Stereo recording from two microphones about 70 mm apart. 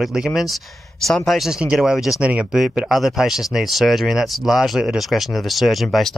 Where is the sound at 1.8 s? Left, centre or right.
Centre.